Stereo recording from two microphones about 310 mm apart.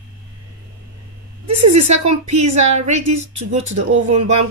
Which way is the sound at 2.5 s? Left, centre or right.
Right.